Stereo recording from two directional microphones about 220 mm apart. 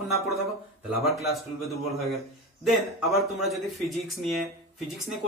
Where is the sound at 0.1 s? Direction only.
Centre (ahead or behind).